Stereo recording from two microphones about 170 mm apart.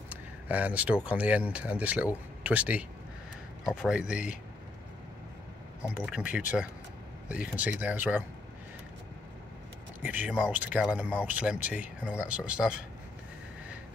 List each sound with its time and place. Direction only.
0.1 s speech: 10° right (ahead or behind)
5.9 s speech: 5° right (ahead or behind)
10.0 s speech: 10° right (ahead or behind)